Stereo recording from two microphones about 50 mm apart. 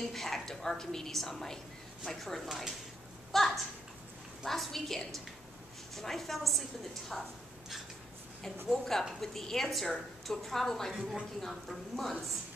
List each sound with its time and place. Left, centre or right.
0.1 s a woman's voice: centre
2.4 s speech: centre
3.3 s a child's voice: centre
8.6 s a woman's voice: centre
11.0 s speech: centre
11.4 s a woman's voice: centre